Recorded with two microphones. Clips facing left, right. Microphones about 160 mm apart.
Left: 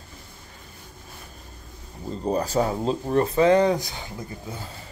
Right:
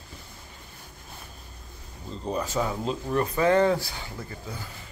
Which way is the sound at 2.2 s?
35° left (ahead or behind).